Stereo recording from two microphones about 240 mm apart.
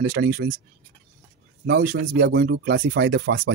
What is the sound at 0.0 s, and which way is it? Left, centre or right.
Speech, right.